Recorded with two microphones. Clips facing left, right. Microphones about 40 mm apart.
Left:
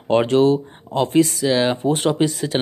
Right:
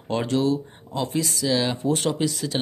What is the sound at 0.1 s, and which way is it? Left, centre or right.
Speech, left.